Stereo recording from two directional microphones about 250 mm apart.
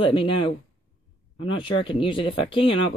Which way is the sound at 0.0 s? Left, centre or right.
Left.